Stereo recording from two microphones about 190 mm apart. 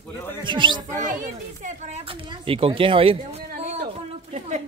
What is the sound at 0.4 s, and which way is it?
Speech, 25° right (ahead or behind).